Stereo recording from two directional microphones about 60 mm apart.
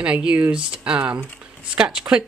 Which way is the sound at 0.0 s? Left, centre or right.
Centre.